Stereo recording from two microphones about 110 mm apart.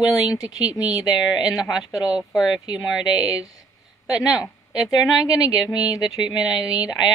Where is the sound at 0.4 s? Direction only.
35° left (ahead or behind).